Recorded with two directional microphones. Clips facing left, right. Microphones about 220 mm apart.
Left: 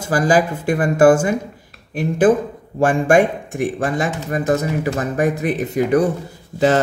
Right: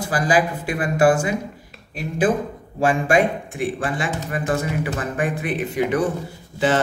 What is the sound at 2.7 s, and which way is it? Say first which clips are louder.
Speech: left 4 dB; 50° left (ahead or behind).